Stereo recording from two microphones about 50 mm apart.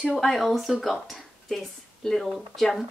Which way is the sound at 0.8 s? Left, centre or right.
Centre.